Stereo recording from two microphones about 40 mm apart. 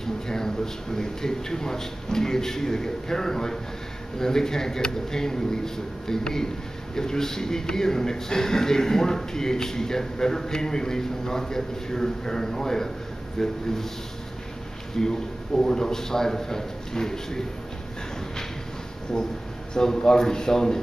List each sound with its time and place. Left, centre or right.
0.0 s a sound: centre
0.9 s a man's voice: centre
15.0 s a man's voice: centre
19.7 s a man's voice: centre